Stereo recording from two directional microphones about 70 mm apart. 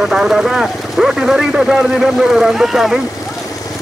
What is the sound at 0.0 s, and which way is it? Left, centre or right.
Speech, centre.